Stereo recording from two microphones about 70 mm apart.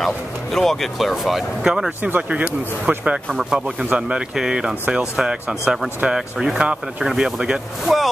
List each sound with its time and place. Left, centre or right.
0.0 s speech: centre
2.0 s speech: right
3.3 s speech: centre